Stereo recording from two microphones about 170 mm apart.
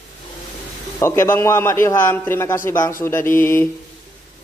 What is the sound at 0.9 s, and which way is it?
A man's voice, 15° left (ahead or behind).